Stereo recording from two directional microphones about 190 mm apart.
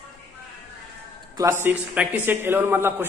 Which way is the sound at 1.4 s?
10° right (ahead or behind).